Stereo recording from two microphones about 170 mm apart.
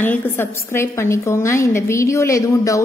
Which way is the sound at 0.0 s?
10° left (ahead or behind).